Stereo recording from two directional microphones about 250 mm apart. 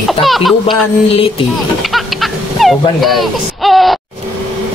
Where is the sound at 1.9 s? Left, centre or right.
Centre.